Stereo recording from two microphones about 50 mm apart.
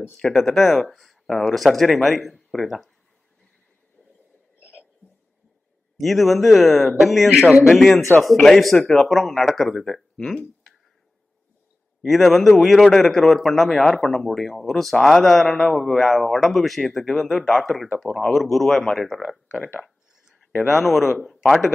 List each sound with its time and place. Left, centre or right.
0.2 s a man's voice: centre
4.6 s a sound: right
5.9 s a man's voice: centre
12.1 s a man's voice: centre